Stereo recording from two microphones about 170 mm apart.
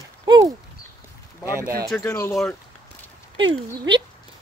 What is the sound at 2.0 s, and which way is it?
Speech, 15° left (ahead or behind).